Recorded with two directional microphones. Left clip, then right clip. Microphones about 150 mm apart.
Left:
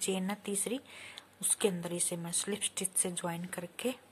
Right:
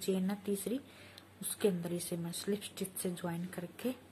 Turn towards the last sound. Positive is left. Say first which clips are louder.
# left 3 dB
turn(degrees=50)  # may be behind; listen again after turning